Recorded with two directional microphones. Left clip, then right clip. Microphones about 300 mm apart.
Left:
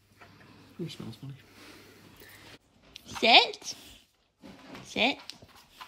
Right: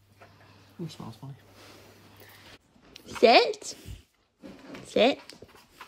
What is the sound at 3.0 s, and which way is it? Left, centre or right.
Speech, left.